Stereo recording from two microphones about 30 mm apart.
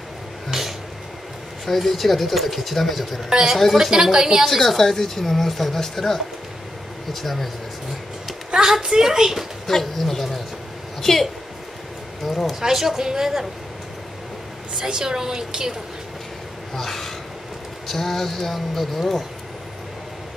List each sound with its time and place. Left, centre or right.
0.5 s a sound: centre
1.7 s speech: centre
3.3 s a woman's voice: centre
4.5 s speech: centre
8.5 s a woman's voice: right
8.9 s a woman's voice: centre
9.7 s a woman's voice: centre
12.3 s speech: centre
12.5 s a woman's voice: centre
14.8 s a woman's voice: right
16.7 s speech: centre